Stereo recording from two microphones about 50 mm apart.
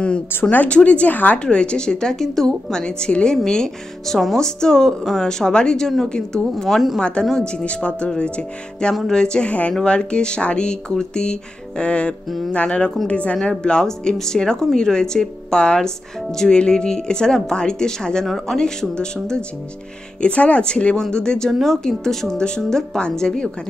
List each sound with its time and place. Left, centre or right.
0.3 s speech: left
0.7 s speech: left
1.4 s a woman's voice: left
6.5 s a woman's voice: centre
7.0 s a woman's voice: centre
18.2 s a woman's voice: centre
18.6 s a woman's voice: centre
20.2 s speech: left
21.5 s a woman's voice: centre